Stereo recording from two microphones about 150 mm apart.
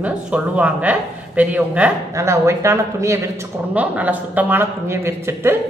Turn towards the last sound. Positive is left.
turn(degrees=-15)  # may be behind; listen again after turning